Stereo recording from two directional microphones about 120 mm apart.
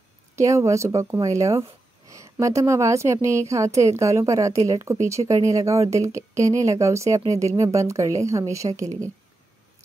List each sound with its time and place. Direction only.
0.4 s speech: 25° right (ahead or behind)